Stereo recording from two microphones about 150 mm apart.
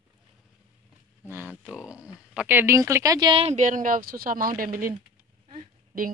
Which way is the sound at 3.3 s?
45° right (ahead or behind).